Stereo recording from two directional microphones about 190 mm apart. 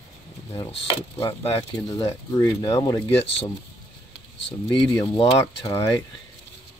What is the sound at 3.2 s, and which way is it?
Speech, 30° left (ahead or behind).